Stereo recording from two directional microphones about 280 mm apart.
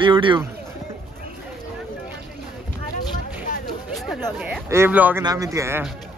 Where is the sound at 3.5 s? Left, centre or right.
Left.